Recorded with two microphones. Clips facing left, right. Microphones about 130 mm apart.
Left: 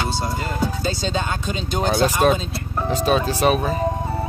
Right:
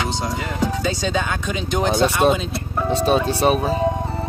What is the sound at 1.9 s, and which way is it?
Speech, 30° right (ahead or behind).